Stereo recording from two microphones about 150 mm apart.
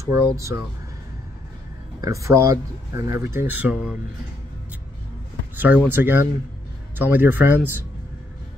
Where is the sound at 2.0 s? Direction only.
20° right (ahead or behind).